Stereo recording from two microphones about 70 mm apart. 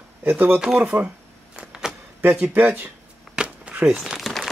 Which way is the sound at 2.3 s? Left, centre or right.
Right.